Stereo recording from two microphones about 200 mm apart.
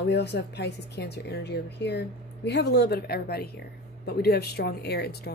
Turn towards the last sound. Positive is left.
turn(degrees=55)  # may be behind; listen again after turning